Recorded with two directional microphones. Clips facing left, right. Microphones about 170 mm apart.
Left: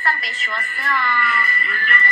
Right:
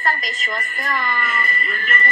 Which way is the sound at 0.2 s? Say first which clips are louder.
Right 2 dB; 40° right (ahead or behind).